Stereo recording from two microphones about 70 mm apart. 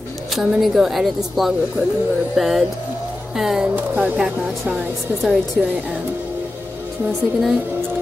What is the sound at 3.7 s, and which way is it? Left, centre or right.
Speech, right.